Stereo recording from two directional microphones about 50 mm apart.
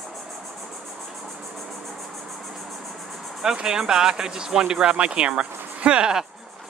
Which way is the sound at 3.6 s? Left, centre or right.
Centre.